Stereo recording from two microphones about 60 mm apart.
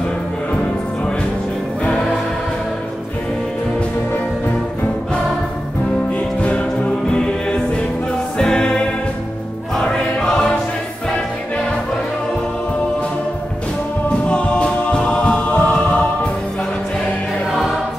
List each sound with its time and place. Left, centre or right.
1.8 s music: centre
6.1 s music: left
9.8 s choir: centre
14.0 s choir: centre